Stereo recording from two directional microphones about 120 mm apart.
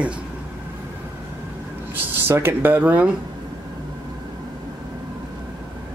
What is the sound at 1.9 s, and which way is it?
Speech, 20° right (ahead or behind).